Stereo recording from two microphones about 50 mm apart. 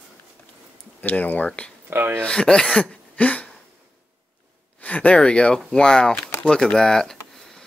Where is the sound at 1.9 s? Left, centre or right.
Right.